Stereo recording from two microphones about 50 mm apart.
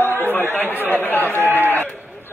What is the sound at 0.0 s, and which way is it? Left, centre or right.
Chatter, left.